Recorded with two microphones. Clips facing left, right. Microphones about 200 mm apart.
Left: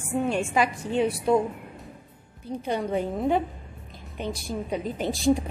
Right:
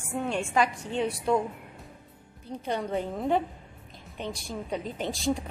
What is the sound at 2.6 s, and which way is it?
A woman's voice, 10° left (ahead or behind).